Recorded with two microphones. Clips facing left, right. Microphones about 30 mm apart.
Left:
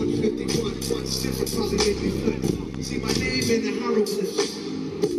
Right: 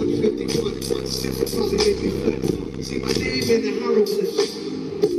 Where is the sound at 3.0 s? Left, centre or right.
Right.